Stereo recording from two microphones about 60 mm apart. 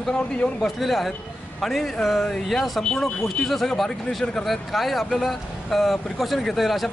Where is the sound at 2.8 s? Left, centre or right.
Centre.